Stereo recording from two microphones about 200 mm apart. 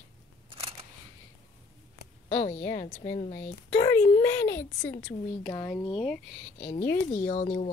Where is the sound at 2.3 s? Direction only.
30° left (ahead or behind).